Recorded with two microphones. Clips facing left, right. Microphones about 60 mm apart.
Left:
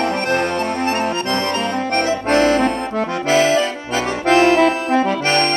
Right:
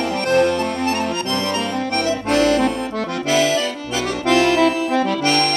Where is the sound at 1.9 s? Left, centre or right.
Left.